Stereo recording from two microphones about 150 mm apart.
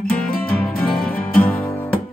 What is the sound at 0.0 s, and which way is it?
Music, 5° left (ahead or behind).